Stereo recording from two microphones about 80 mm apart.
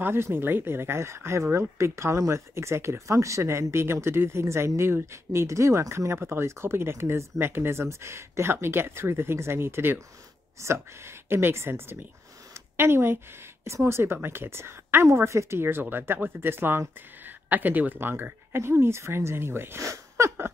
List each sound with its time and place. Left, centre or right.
0.0 s speech: right
12.5 s a sound: right
13.7 s speech: right